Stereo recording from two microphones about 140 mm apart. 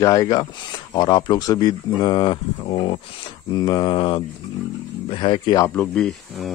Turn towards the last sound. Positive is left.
turn(degrees=5)  # may be behind; listen again after turning